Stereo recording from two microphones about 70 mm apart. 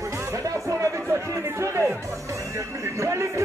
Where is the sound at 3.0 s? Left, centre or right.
Right.